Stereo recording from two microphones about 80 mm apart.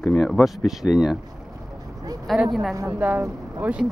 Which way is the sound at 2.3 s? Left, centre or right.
Centre.